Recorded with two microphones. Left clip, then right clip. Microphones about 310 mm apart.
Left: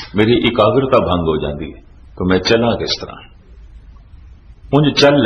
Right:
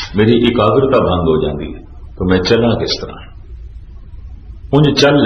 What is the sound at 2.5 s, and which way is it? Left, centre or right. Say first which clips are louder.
Speech: right 1 dB; left.